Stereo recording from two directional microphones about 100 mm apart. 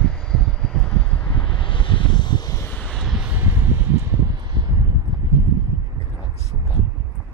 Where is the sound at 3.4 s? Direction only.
25° right (ahead or behind).